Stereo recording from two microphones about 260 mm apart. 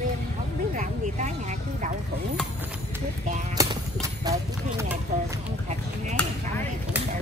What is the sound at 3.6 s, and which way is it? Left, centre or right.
Clip-clop, centre.